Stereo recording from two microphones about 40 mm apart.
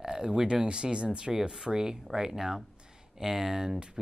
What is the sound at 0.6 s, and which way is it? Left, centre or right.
Speech, right.